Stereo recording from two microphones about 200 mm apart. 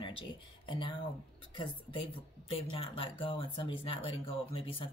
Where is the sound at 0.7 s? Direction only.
25° left (ahead or behind).